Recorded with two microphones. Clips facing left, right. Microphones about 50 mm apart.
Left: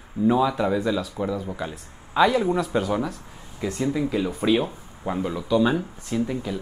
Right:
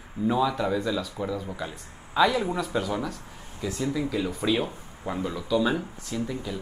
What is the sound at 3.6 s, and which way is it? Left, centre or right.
Speech, left.